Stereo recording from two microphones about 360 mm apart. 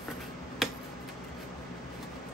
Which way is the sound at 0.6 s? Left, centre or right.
Centre.